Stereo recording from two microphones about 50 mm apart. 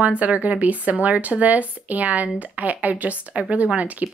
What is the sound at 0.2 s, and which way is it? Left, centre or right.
Speech, right.